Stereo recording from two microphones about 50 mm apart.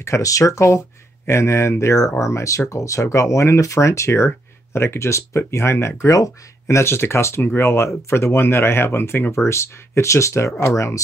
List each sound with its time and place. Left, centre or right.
0.0 s speech: left
4.7 s speech: left